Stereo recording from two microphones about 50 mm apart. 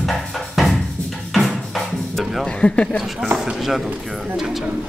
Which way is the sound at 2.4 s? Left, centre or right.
Left.